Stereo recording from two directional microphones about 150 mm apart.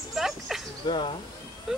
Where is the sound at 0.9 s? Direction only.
30° left (ahead or behind).